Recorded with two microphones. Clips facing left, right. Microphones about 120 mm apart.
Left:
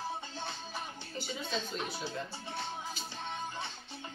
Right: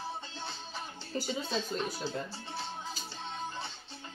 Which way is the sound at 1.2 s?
40° right (ahead or behind).